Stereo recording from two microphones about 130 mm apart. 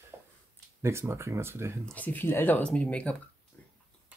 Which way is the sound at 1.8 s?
10° left (ahead or behind).